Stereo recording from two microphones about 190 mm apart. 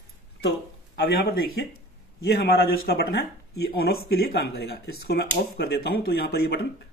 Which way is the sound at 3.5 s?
55° left (ahead or behind).